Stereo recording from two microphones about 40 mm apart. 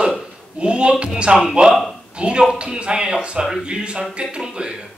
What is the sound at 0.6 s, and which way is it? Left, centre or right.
A woman's voice, right.